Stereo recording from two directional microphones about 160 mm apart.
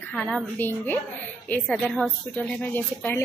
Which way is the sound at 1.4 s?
10° left (ahead or behind).